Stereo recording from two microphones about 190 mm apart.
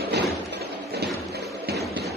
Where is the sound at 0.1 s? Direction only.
60° right (ahead or behind).